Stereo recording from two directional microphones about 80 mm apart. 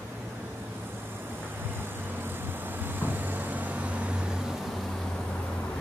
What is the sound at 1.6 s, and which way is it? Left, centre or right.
Vehicle, right.